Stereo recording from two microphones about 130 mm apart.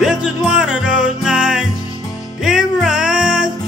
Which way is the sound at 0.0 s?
5° right (ahead or behind).